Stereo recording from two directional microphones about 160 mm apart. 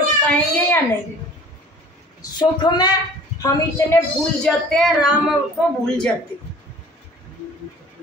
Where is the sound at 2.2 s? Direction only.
30° left (ahead or behind).